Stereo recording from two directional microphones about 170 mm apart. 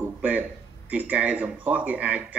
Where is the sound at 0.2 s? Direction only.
10° right (ahead or behind).